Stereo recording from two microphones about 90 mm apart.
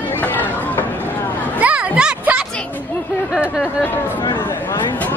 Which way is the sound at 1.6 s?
15° right (ahead or behind).